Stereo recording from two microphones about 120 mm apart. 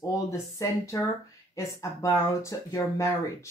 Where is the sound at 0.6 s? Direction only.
25° left (ahead or behind).